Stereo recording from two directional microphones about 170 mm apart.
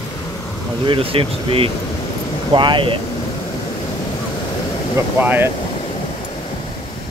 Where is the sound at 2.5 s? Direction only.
30° right (ahead or behind).